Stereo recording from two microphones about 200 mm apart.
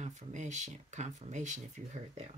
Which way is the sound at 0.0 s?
35° right (ahead or behind).